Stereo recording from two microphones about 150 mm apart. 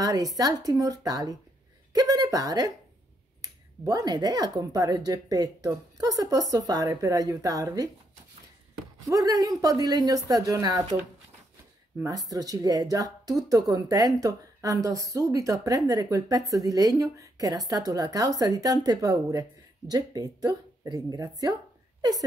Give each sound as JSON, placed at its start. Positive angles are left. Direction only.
{"t": 0.0, "sound": "speech", "side_deg": -25}
{"t": 3.8, "sound": "speech", "side_deg": -25}
{"t": 9.0, "sound": "speech", "side_deg": -25}
{"t": 12.0, "sound": "speech", "side_deg": -25}